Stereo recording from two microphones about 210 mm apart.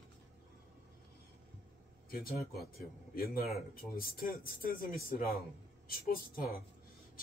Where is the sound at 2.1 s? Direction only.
45° left (ahead or behind).